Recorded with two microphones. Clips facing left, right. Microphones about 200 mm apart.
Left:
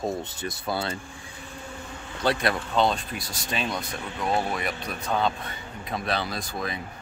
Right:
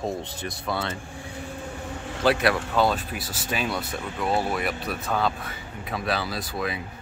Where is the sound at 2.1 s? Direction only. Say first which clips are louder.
Right 3 dB; 75° right (ahead or behind).